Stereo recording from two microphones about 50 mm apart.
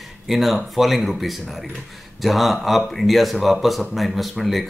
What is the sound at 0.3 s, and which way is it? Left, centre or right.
Speech, centre.